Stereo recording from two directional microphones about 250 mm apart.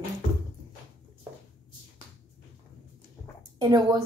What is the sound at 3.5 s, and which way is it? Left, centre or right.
Speech, centre.